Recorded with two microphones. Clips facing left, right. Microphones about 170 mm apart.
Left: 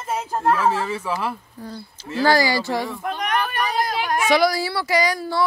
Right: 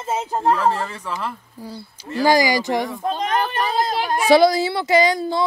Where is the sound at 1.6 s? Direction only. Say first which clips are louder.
Even; 10° right (ahead or behind).